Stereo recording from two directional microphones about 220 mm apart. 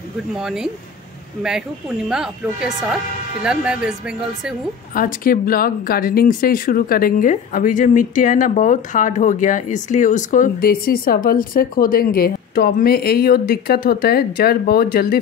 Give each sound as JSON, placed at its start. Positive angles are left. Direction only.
{"t": 0.4, "sound": "speech", "side_deg": 0}
{"t": 2.0, "sound": "speech", "side_deg": -5}
{"t": 4.9, "sound": "speech", "side_deg": 40}